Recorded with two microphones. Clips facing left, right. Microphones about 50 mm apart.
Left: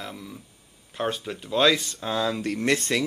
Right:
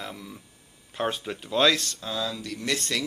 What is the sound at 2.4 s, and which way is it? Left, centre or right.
Speech, left.